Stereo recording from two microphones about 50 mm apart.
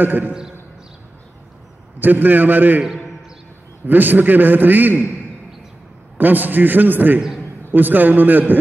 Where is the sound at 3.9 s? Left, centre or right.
Right.